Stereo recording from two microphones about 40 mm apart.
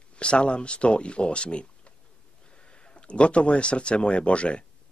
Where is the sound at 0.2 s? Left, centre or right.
Left.